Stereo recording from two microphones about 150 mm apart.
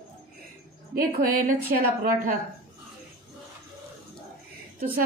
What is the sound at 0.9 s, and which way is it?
A woman's voice, 70° right (ahead or behind).